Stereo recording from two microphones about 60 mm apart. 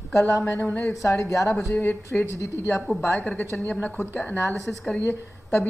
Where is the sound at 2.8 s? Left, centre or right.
Centre.